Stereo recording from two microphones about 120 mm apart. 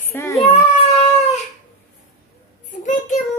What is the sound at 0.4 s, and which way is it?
Baby cry, 55° left (ahead or behind).